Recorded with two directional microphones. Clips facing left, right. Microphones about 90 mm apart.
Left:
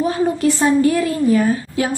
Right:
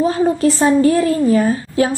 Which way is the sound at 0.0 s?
35° right (ahead or behind).